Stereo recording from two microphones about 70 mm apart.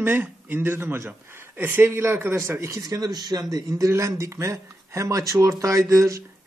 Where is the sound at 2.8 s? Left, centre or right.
Right.